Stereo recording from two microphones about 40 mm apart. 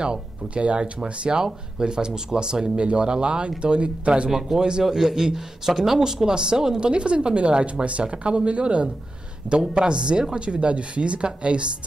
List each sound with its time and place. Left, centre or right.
0.0 s speech: right
4.3 s speech: centre
4.6 s speech: right